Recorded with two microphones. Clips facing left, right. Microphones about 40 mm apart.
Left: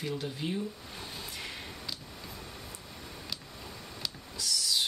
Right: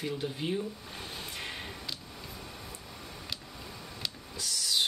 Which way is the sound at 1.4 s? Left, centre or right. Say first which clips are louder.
Right 4 dB; right.